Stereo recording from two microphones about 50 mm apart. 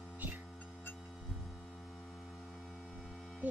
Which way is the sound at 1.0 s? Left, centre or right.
Centre.